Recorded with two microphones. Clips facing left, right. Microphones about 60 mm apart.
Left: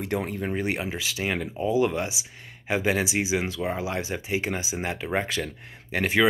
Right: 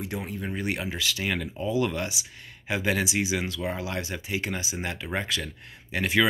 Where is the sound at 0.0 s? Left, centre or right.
Left.